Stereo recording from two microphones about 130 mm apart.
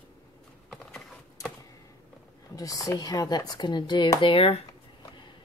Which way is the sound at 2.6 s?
25° left (ahead or behind).